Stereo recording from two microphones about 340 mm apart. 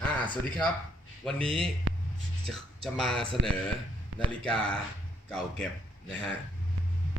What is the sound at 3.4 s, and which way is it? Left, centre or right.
Speech, right.